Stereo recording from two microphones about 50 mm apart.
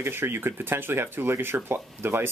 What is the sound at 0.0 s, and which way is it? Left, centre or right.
Speech, right.